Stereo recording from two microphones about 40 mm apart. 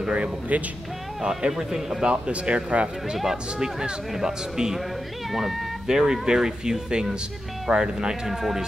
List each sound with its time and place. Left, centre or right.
0.1 s speech: right
1.2 s speech: right
2.2 s speech: right
3.2 s speech: centre
5.9 s speech: centre
8.3 s speech: centre